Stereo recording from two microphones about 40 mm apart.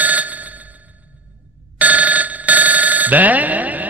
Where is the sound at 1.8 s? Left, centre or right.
Right.